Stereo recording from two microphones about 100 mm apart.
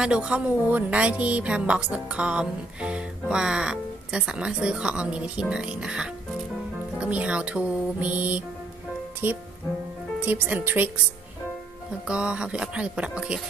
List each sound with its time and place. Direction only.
0.0 s a woman's voice: 10° right (ahead or behind)
12.1 s a woman's voice: 10° right (ahead or behind)